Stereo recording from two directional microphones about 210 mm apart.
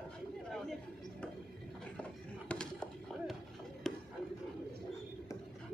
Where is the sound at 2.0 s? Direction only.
5° left (ahead or behind).